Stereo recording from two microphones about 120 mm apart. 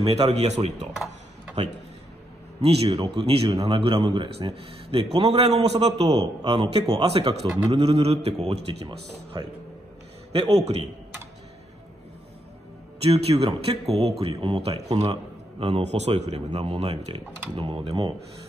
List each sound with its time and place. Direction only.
0.0 s speech: 55° right (ahead or behind)
2.6 s speech: 55° right (ahead or behind)
8.8 s speech: 35° right (ahead or behind)
10.5 s speech: 65° right (ahead or behind)
13.0 s a man's voice: 55° right (ahead or behind)